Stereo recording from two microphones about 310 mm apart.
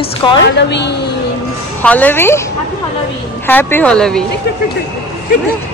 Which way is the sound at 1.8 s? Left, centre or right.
Centre.